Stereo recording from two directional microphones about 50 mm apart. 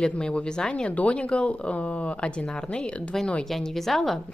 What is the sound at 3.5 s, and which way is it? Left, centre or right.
Speech, centre.